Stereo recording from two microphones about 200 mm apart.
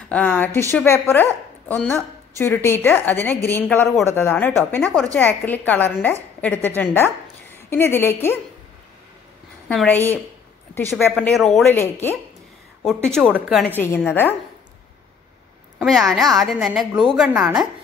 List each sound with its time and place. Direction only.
0.1 s a woman's voice: 10° left (ahead or behind)
9.7 s a woman's voice: 5° left (ahead or behind)
13.7 s a woman's voice: 10° left (ahead or behind)
15.8 s a woman's voice: centre (ahead or behind)